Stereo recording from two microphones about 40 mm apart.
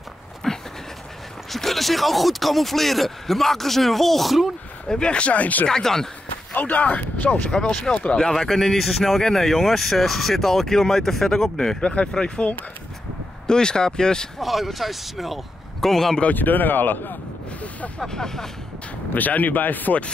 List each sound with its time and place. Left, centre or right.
0.4 s dog: centre
1.5 s speech: centre
4.8 s speech: left
5.7 s speech: centre
6.5 s speech: left
7.7 s speech: centre
11.8 s speech: left
13.5 s speech: centre
14.4 s speech: centre
16.3 s speech: left
17.6 s a sound: left
18.0 s speech: centre
19.1 s speech: left